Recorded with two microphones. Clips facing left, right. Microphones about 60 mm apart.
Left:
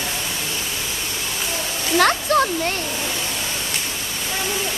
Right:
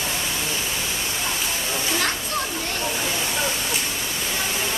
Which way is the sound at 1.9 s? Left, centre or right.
Left.